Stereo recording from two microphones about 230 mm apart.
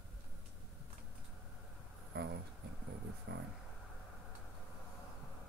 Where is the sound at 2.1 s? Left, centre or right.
Right.